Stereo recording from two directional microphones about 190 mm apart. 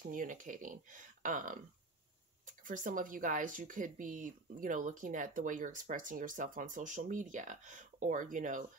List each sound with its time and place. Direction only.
0.0 s speech: 45° right (ahead or behind)